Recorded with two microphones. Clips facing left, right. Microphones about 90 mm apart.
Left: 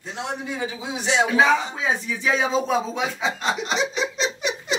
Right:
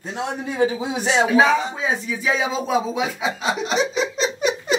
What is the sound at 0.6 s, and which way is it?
Speech, 45° right (ahead or behind).